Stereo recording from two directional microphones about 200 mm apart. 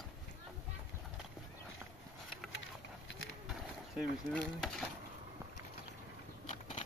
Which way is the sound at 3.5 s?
Centre (ahead or behind).